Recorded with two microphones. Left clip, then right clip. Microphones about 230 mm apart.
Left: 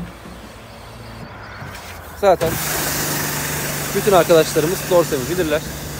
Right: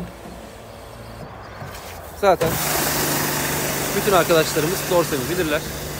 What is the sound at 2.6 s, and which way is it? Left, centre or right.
Vehicle, right.